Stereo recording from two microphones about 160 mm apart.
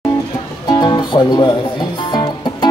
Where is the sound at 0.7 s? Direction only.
25° left (ahead or behind).